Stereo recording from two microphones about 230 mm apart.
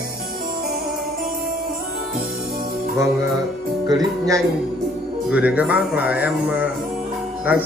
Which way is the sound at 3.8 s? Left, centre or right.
Centre.